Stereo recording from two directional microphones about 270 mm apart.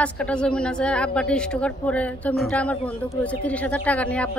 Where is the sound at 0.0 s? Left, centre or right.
Centre.